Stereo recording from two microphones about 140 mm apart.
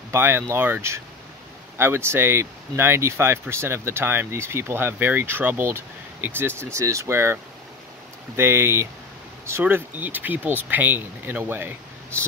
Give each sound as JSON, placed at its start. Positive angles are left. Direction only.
{"t": 0.1, "sound": "speech", "side_deg": -15}
{"t": 8.4, "sound": "speech", "side_deg": -15}